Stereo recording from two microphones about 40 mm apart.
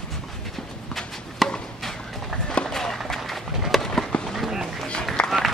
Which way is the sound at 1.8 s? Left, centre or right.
Centre.